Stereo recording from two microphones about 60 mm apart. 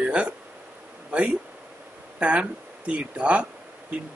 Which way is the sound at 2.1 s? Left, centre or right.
Right.